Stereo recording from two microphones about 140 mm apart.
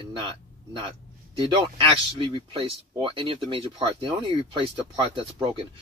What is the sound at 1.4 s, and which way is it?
Speech, 35° right (ahead or behind).